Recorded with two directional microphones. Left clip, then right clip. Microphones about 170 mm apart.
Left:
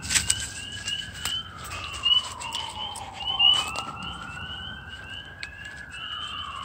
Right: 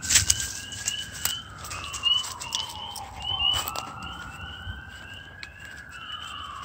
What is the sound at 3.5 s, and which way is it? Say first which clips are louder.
Police car: left 3 dB; 75° right (ahead or behind).